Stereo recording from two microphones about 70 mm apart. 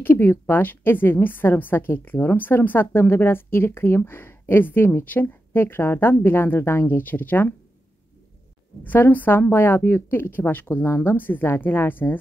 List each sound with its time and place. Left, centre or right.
0.0 s a woman's voice: left
8.8 s a woman's voice: left